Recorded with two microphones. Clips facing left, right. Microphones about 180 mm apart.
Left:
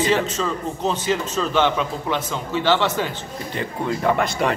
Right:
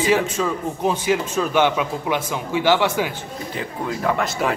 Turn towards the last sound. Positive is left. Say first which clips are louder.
# left 1 dB
turn(degrees=-5)  # may be behind; listen again after turning